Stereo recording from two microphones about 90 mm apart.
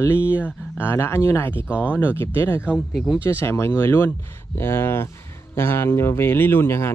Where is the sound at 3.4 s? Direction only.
25° left (ahead or behind).